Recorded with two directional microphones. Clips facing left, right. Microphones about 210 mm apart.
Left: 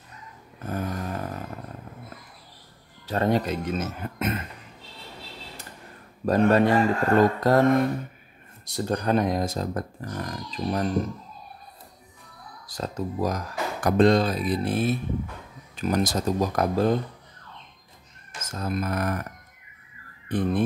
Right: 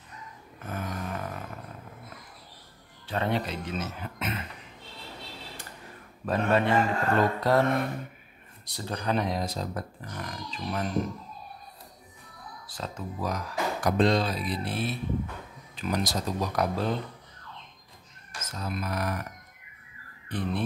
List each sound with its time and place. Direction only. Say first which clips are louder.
0.7 s snoring: left 4 dB; 40° left (ahead or behind)
3.1 s speech: left 6 dB; 40° left (ahead or behind)
6.2 s a man's voice: left 6 dB; 40° left (ahead or behind)
8.7 s speech: left 6 dB; 45° left (ahead or behind)
12.6 s speech: left 7 dB; 40° left (ahead or behind)
18.5 s speech: left 5 dB; 45° left (ahead or behind)
20.2 s speech: left 7 dB; 50° left (ahead or behind)